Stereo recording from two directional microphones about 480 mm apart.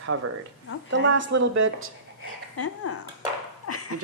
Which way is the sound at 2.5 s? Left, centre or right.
Left.